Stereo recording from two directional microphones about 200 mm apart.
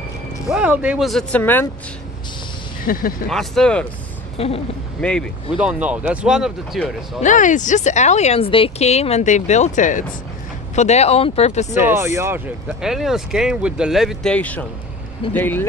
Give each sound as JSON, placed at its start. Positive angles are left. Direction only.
{"t": 0.5, "sound": "speech", "side_deg": -5}
{"t": 2.9, "sound": "speech", "side_deg": 45}
{"t": 3.3, "sound": "speech", "side_deg": 0}
{"t": 4.4, "sound": "a woman's voice", "side_deg": 30}
{"t": 5.0, "sound": "speech", "side_deg": 5}
{"t": 7.2, "sound": "speech", "side_deg": 40}
{"t": 11.7, "sound": "speech", "side_deg": -10}